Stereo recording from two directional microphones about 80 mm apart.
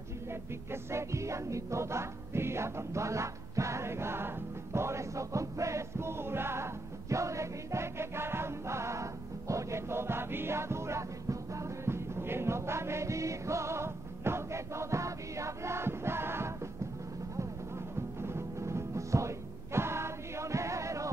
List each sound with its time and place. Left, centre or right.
0.3 s music: right
17.9 s music: right